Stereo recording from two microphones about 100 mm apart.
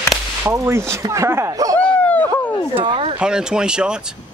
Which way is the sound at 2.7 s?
65° right (ahead or behind).